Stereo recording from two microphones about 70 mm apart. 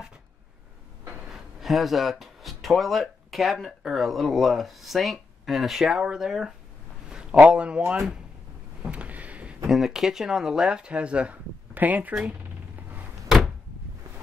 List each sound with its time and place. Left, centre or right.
1.2 s speech: centre
8.8 s boat: centre
9.7 s speech: centre; by 12.1 s right